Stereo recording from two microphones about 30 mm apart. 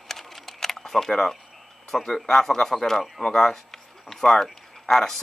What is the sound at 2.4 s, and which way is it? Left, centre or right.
Speech, centre.